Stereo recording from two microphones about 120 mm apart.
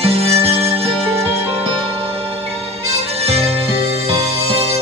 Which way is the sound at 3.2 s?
60° right (ahead or behind).